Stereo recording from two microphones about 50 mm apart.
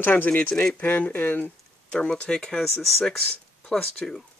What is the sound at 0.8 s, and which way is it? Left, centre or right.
Speech, left.